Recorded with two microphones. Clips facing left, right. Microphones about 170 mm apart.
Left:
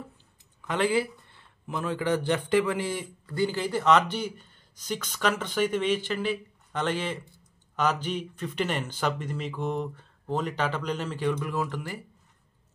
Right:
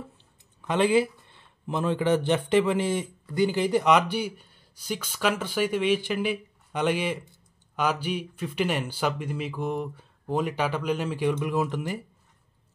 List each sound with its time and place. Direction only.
0.7 s speech: 20° right (ahead or behind)